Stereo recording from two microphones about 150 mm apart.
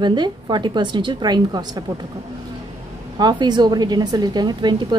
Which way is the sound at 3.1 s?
30° right (ahead or behind).